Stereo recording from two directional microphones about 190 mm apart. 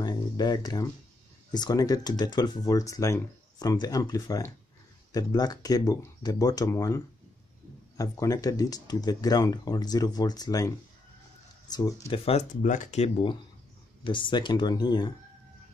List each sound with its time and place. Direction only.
0.0 s a sound: 20° left (ahead or behind)
1.5 s speech: 20° left (ahead or behind)
8.0 s speech: 20° left (ahead or behind)
11.7 s speech: 20° left (ahead or behind)
12.3 s speech: 40° left (ahead or behind); by 15.1 s 20° left (ahead or behind)